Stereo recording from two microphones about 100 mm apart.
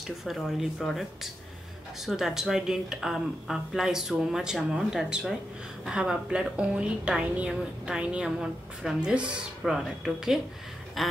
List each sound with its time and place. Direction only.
0.0 s a woman's voice: centre (ahead or behind)
11.0 s quack: centre (ahead or behind)